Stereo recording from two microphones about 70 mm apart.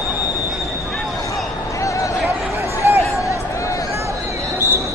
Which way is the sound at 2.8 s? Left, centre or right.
Right.